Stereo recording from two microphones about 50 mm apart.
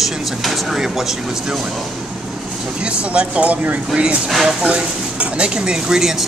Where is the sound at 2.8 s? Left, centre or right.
Right.